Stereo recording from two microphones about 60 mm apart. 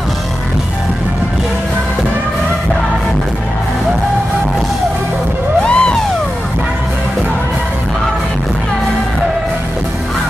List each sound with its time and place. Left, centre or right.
5.7 s music: centre